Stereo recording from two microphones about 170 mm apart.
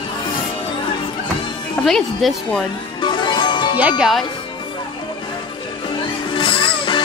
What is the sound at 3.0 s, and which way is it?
Music, 25° left (ahead or behind).